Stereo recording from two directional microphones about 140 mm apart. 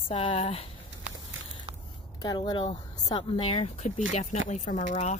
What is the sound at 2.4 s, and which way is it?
Speech, 40° left (ahead or behind).